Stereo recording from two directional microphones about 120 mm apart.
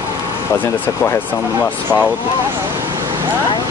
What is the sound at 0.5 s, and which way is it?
Speech, 15° left (ahead or behind).